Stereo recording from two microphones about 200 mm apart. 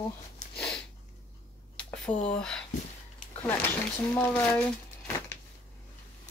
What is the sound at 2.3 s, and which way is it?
Speech, 5° left (ahead or behind).